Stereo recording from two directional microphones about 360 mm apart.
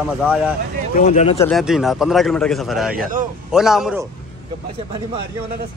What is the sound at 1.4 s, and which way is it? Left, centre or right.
A man's voice, centre.